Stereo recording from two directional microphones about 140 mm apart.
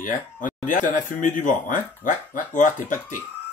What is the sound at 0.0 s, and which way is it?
Speech, 70° left (ahead or behind).